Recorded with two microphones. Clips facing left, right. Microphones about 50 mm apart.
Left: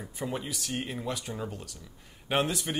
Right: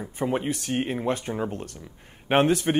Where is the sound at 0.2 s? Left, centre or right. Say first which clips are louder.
Right 8 dB; right.